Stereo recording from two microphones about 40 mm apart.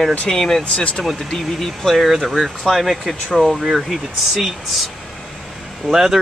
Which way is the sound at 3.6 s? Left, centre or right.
Centre.